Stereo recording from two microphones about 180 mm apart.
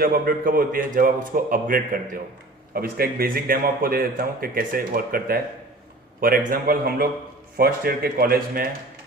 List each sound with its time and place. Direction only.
0.0 s a man's voice: 55° right (ahead or behind)